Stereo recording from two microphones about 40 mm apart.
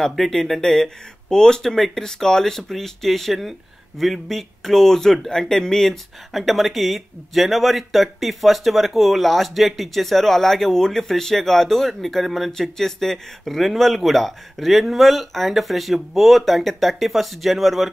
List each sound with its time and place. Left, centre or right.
0.1 s speech: centre
6.3 s speech: centre